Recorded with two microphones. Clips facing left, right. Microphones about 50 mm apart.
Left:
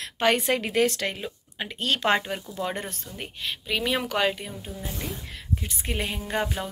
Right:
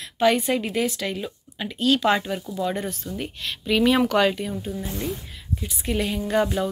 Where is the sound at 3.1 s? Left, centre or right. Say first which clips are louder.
Right 3 dB; centre.